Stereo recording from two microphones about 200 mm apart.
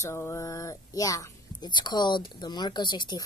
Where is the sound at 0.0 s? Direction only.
15° left (ahead or behind).